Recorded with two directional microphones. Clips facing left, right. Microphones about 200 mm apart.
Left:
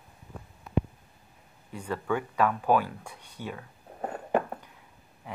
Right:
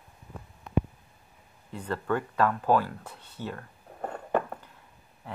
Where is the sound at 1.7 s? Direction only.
10° left (ahead or behind).